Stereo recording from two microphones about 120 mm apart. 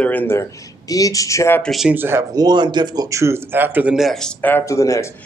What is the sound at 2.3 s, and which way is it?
Speech, 35° right (ahead or behind).